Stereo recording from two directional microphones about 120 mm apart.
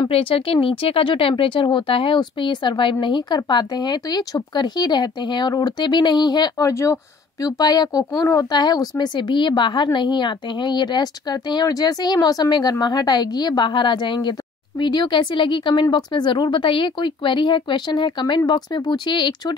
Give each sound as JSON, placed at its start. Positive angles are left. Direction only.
{"t": 0.1, "sound": "speech", "side_deg": 50}
{"t": 6.7, "sound": "speech", "side_deg": 25}